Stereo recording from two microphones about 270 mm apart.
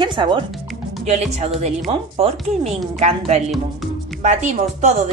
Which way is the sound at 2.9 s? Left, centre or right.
Right.